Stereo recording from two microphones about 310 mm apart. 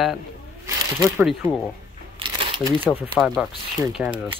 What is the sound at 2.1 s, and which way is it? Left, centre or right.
Crumpling, centre.